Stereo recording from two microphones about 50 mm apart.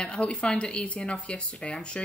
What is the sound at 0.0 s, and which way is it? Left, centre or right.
Speech, centre.